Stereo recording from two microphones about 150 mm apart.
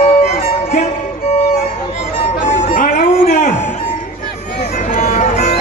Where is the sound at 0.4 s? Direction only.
65° left (ahead or behind).